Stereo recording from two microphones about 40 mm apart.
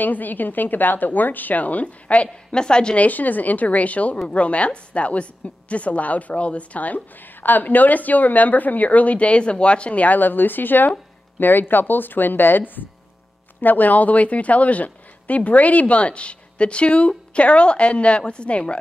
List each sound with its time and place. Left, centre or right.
0.0 s speech: left
2.5 s a woman's voice: left
3.0 s speech: left
7.4 s a woman's voice: left